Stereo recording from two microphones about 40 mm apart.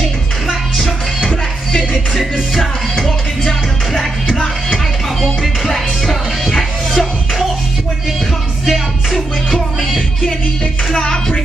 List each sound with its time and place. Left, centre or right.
1.8 s music: centre
5.2 s music: centre
6.9 s music: centre
8.6 s music: centre
10.9 s music: centre